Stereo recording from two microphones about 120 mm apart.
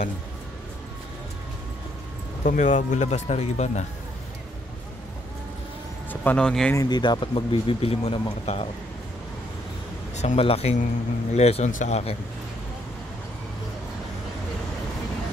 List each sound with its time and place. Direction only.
2.4 s speech: 90° left; by 3.8 s 70° left (ahead or behind)
6.2 s speech: 5° left (ahead or behind)
6.9 s speech: 40° left (ahead or behind); by 8.6 s 55° left (ahead or behind)
10.1 s a sound: 70° left (ahead or behind)
10.4 s speech: 55° left (ahead or behind)